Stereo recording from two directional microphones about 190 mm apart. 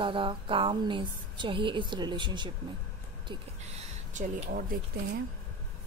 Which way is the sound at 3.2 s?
30° right (ahead or behind).